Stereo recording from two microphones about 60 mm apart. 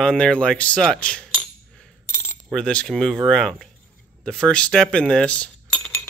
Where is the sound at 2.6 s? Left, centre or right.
Centre.